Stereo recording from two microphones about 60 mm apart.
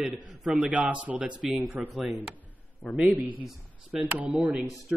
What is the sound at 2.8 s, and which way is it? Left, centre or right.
Speech, centre.